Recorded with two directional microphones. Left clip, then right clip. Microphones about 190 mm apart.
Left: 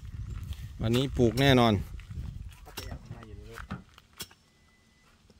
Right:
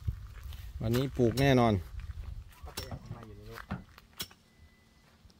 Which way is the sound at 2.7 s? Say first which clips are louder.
Even; 55° left (ahead or behind).